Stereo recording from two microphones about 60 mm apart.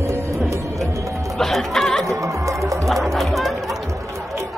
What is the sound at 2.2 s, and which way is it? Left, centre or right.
Music, right.